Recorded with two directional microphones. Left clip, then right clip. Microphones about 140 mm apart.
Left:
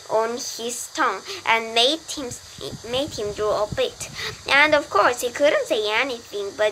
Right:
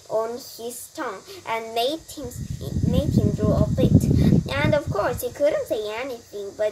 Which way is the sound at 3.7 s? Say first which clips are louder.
Right 2 dB; 15° right (ahead or behind).